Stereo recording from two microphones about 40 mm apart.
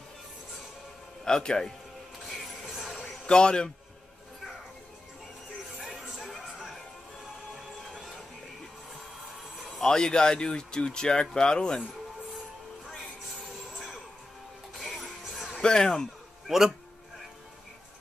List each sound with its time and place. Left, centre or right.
1.2 s a man's voice: centre
2.3 s music: centre
3.3 s speech: left
5.9 s music: centre
9.8 s speech: centre
13.7 s music: centre
15.6 s a man's voice: centre
16.4 s a man's voice: centre